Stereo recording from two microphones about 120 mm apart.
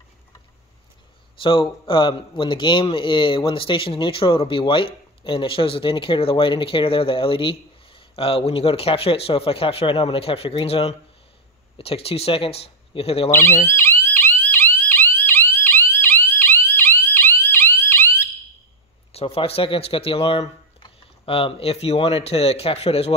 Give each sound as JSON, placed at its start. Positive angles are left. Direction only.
{"t": 1.4, "sound": "a man's voice", "side_deg": 45}
{"t": 13.3, "sound": "police car", "side_deg": 20}
{"t": 19.1, "sound": "a man's voice", "side_deg": 55}